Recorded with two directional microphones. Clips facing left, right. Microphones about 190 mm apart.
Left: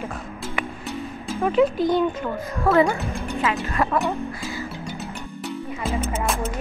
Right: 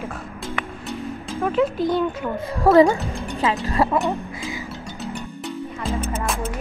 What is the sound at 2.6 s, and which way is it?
Speech, 35° right (ahead or behind).